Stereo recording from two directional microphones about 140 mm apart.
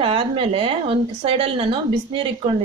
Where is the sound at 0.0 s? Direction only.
40° right (ahead or behind).